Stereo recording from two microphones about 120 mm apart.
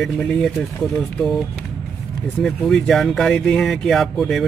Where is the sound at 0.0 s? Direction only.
5° left (ahead or behind).